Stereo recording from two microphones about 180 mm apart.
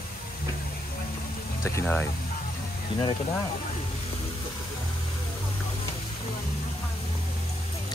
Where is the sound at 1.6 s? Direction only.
15° left (ahead or behind).